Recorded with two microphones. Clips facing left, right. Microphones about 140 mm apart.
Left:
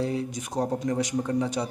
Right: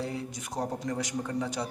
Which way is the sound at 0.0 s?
20° left (ahead or behind).